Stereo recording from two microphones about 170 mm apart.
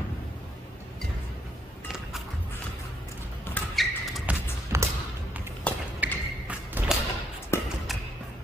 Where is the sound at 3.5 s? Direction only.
Centre (ahead or behind).